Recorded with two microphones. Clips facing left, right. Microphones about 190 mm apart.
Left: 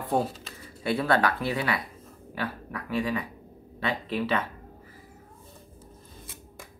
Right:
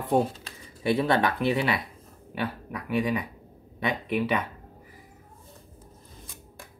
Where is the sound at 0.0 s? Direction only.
20° right (ahead or behind).